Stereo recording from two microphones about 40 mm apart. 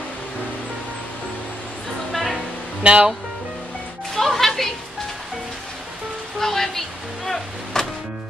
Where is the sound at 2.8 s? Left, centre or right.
Right.